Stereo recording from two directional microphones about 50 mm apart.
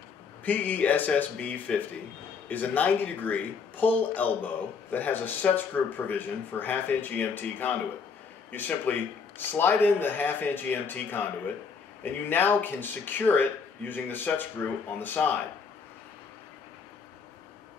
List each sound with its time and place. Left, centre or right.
0.5 s speech: left